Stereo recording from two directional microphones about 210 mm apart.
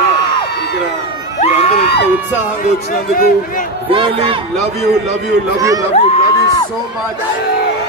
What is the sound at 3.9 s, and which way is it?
Speech, 25° right (ahead or behind).